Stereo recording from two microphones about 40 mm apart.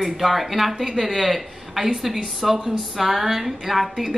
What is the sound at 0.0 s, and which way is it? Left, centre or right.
A woman's voice, centre.